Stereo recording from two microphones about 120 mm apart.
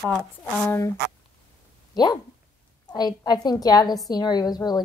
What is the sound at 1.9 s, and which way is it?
A woman's voice, 35° left (ahead or behind).